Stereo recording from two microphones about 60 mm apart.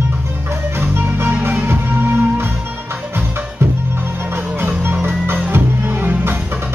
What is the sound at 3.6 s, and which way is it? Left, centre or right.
Music, right.